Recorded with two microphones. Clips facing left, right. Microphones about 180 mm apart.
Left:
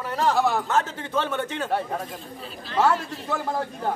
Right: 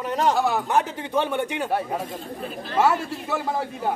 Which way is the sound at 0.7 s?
15° right (ahead or behind).